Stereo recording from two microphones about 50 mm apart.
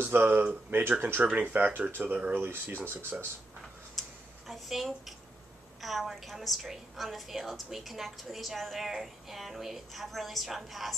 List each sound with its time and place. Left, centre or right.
0.0 s speech: right
1.2 s speech: right
4.5 s a woman's voice: centre